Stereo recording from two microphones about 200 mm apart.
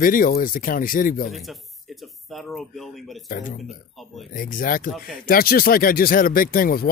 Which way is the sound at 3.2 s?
40° left (ahead or behind).